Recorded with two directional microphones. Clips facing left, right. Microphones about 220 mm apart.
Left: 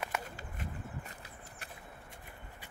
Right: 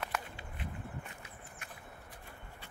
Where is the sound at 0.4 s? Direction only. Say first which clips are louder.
Left 1 dB; 40° left (ahead or behind).